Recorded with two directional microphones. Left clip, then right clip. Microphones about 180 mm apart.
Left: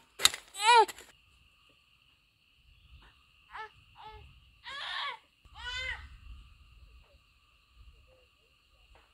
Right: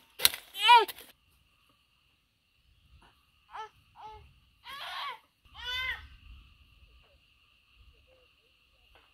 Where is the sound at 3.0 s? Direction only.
65° right (ahead or behind).